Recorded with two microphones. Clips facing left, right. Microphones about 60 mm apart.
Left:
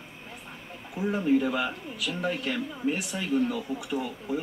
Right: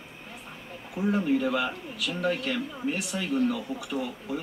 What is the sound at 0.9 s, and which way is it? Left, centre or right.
Speech, centre.